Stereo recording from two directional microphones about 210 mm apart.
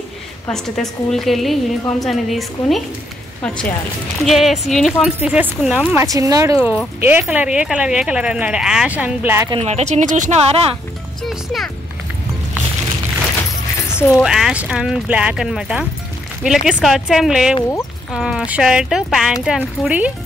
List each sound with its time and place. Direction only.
0.5 s speech: centre (ahead or behind); by 6.6 s 15° right (ahead or behind)
6.6 s speech: 5° right (ahead or behind)
9.5 s speech: 30° right (ahead or behind)
11.2 s speech: centre (ahead or behind)
13.9 s speech: 10° left (ahead or behind)
14.2 s speech: centre (ahead or behind)